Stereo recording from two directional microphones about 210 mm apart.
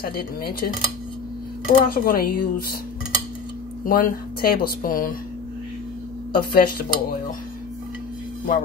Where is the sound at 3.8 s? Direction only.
45° left (ahead or behind).